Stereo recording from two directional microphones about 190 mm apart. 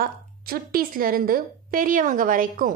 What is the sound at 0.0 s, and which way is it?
A woman's voice, 50° right (ahead or behind).